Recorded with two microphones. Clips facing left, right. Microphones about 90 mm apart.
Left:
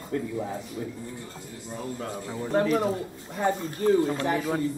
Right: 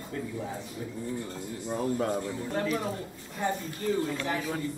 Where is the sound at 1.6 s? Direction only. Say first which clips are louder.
Right 5 dB; 40° right (ahead or behind).